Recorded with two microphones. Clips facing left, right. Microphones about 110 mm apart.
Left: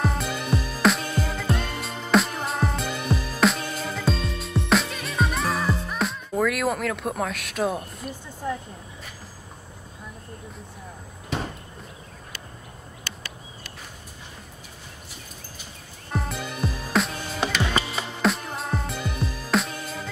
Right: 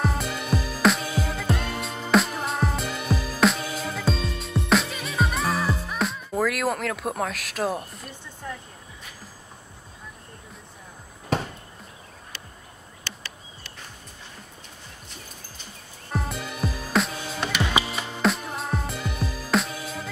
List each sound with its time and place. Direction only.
0.0 s music: centre (ahead or behind)
8.4 s speech: 20° left (ahead or behind)
16.1 s music: centre (ahead or behind)